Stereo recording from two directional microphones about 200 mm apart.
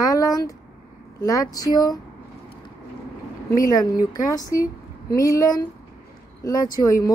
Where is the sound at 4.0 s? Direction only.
20° left (ahead or behind).